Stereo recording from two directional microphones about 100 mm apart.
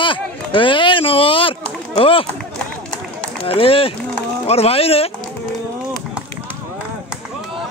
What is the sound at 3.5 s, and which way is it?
Speech, 70° left (ahead or behind).